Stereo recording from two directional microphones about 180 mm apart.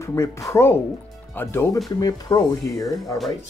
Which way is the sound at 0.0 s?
15° left (ahead or behind).